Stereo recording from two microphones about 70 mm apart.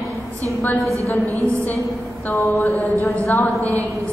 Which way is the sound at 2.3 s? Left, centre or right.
Left.